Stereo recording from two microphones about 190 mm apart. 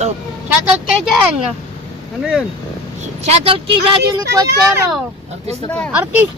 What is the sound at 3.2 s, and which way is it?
Speech, 30° right (ahead or behind).